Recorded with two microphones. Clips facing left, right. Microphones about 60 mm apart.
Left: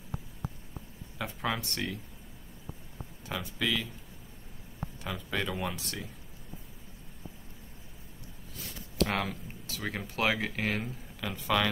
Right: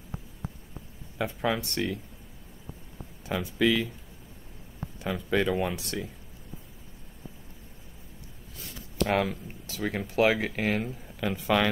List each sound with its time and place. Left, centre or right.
1.1 s speech: centre
3.3 s speech: right
5.0 s speech: centre
9.0 s speech: centre
11.2 s speech: right